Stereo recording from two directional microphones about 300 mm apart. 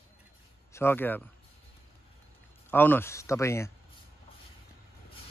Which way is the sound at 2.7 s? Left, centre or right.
Centre.